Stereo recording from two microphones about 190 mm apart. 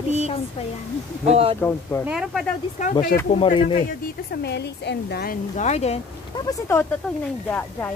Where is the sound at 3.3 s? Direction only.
30° left (ahead or behind).